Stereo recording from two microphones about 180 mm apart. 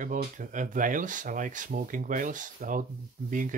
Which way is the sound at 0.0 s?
45° right (ahead or behind).